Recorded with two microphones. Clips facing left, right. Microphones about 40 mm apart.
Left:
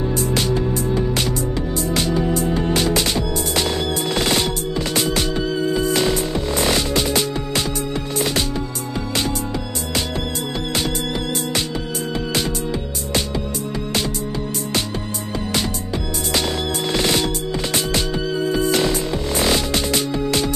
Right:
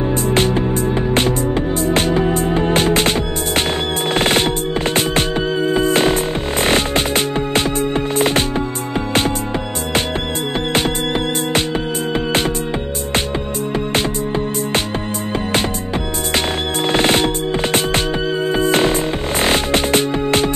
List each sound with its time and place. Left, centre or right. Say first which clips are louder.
0.1 s music: right 6 dB; right
10.7 s music: right 5 dB; right
16.3 s music: right 2 dB; right